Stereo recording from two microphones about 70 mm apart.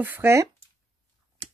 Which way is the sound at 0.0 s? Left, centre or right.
Right.